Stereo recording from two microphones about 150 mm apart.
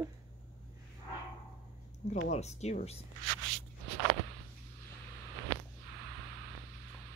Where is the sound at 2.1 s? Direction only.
50° left (ahead or behind).